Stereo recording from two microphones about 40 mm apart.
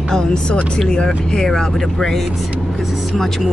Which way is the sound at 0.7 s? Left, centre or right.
Centre.